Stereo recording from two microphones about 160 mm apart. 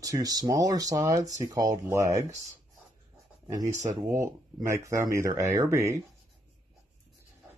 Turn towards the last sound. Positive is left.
turn(degrees=-15)  # may be behind; listen again after turning